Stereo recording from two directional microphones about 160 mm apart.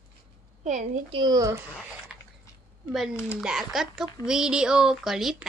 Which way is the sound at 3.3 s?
Centre (ahead or behind).